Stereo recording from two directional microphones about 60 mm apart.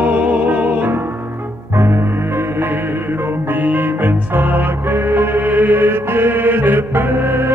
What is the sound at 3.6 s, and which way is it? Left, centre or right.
Music, right.